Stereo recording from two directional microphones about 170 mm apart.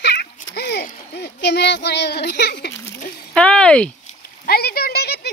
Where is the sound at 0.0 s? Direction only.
80° left.